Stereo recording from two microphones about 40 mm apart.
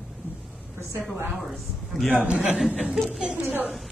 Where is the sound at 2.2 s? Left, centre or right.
Right.